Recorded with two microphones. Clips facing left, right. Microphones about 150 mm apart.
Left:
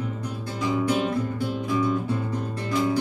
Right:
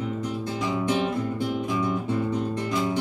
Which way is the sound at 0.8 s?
20° right (ahead or behind).